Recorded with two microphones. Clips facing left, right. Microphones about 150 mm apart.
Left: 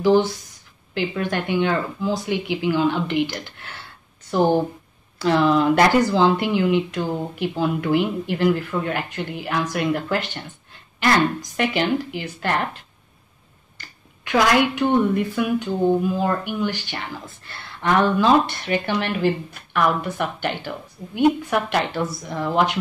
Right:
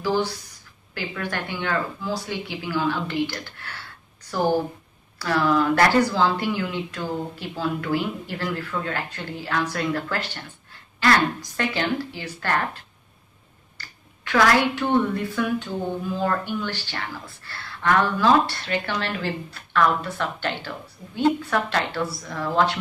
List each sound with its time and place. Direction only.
0.0 s speech: 20° left (ahead or behind)
5.2 s speech: 20° left (ahead or behind)
13.7 s finger snapping: 20° left (ahead or behind)
15.3 s speech: 15° left (ahead or behind)